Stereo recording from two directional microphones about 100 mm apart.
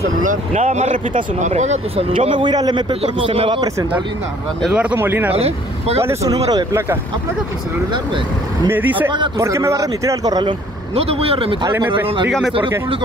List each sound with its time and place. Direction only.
1.5 s speech: 75° right (ahead or behind); by 2.8 s 45° right (ahead or behind)
2.9 s a man's voice: 60° right (ahead or behind)
4.9 s speech: 20° right (ahead or behind)
5.3 s speech: 90° right
5.9 s a man's voice: 30° right (ahead or behind)
8.9 s speech: 50° right (ahead or behind)
9.4 s a man's voice: 30° right (ahead or behind)
11.0 s speech: 75° right (ahead or behind)
12.3 s speech: 5° left (ahead or behind)